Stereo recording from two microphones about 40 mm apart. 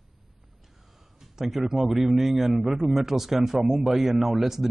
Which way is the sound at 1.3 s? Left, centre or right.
Centre.